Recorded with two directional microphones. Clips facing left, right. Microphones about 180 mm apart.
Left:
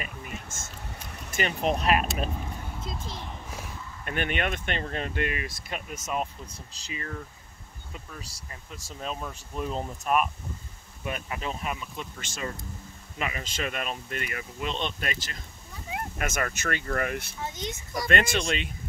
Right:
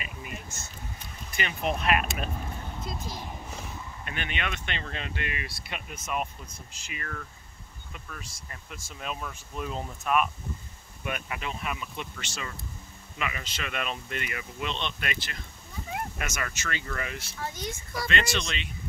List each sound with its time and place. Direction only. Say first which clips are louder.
1.3 s speech: left 3 dB; 40° left (ahead or behind)
4.0 s speech: left 6 dB; 50° left (ahead or behind)
6.8 s speech: left 3 dB; 30° left (ahead or behind)
8.7 s speech: left 2 dB; 35° left (ahead or behind)
11.8 s speech: even; centre (ahead or behind)
12.2 s speech: left 4 dB; 45° left (ahead or behind)
17.4 s speech: left 1 dB; 20° left (ahead or behind)
18.0 s speech: left 4 dB; 50° left (ahead or behind)